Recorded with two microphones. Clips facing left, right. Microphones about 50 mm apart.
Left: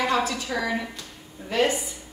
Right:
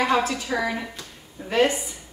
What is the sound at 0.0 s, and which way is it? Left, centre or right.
A woman's voice, centre.